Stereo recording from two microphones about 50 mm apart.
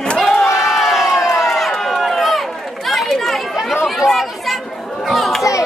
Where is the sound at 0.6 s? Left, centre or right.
Centre.